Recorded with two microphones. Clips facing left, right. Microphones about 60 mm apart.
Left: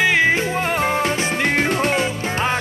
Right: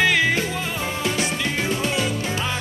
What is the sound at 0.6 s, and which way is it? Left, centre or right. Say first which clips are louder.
Music: left 6 dB; left.